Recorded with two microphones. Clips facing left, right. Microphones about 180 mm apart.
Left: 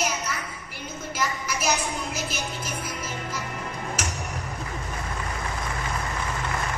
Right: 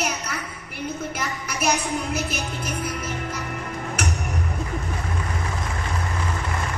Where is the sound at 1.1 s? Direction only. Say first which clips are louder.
Left 1 dB; 60° right (ahead or behind).